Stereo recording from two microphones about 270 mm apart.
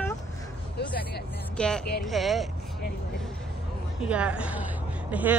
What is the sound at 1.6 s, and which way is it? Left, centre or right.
Speech, centre.